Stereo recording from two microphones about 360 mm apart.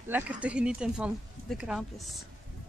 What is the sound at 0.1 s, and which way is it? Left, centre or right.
Speech, centre.